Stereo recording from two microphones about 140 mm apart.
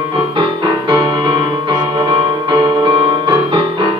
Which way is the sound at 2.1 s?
35° right (ahead or behind).